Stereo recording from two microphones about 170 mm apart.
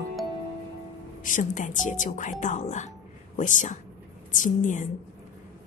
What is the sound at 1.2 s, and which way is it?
Speech, 50° left (ahead or behind).